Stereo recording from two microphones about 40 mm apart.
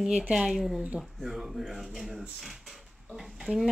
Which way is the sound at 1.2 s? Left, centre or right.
Centre.